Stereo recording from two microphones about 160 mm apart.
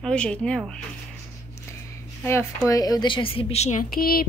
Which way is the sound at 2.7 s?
25° left (ahead or behind).